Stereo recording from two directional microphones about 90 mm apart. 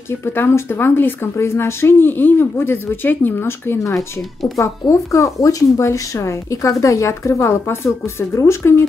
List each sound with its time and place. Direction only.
0.2 s speech: 25° left (ahead or behind)